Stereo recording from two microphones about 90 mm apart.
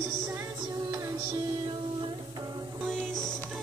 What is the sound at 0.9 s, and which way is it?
Music, 40° right (ahead or behind).